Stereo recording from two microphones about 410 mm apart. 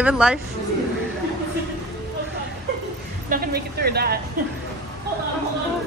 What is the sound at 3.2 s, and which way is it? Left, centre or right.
Speech, right.